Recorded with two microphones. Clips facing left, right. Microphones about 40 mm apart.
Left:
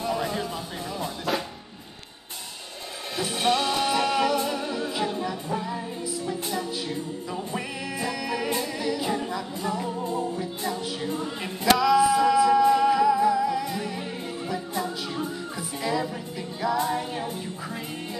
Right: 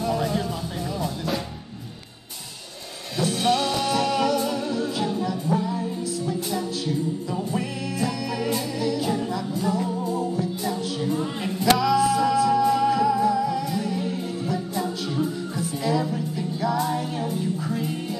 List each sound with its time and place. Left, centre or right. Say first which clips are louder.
0.0 s music: right 3 dB; centre
3.2 s music: right 2 dB; centre